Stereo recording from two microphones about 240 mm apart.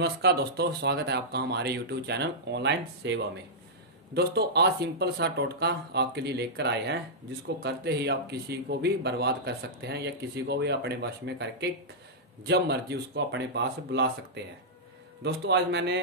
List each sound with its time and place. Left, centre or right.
0.0 s speech: right